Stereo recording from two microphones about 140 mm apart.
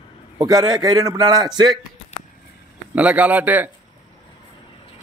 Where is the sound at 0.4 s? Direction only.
25° right (ahead or behind).